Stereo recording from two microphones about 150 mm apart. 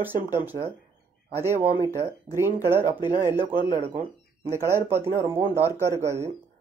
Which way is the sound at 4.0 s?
15° right (ahead or behind).